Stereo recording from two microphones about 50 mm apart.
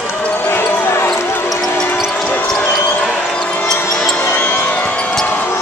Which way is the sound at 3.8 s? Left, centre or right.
Centre.